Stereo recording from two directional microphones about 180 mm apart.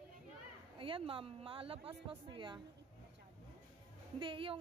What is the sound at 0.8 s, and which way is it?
A woman's voice, 30° right (ahead or behind).